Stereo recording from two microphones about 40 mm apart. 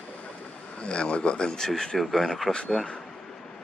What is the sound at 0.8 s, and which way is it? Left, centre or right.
Speech, left.